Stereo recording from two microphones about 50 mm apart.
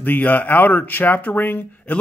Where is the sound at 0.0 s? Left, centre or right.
Left.